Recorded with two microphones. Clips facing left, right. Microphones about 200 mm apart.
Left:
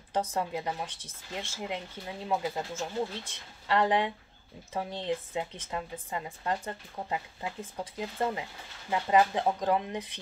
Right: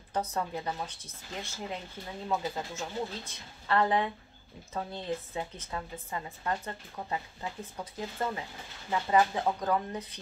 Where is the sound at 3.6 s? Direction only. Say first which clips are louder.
Left 1 dB; 15° left (ahead or behind).